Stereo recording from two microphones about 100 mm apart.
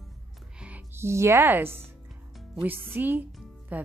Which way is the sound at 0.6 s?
15° right (ahead or behind).